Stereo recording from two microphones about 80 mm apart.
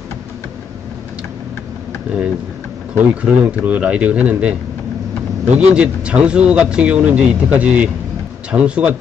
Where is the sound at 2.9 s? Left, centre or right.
Centre.